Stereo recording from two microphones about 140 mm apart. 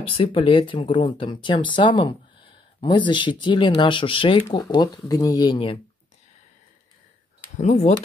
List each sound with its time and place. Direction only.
0.1 s speech: 40° left (ahead or behind)
4.5 s speech: 25° left (ahead or behind)
7.5 s speech: 60° left (ahead or behind)